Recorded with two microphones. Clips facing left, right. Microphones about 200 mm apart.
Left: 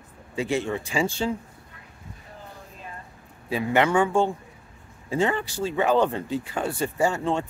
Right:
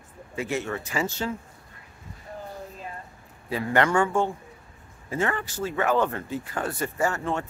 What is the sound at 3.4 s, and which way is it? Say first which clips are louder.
Speech: left 1 dB; 15° left (ahead or behind).